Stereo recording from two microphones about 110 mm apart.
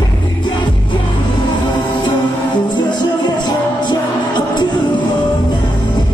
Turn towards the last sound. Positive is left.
turn(degrees=45)  # may be behind; listen again after turning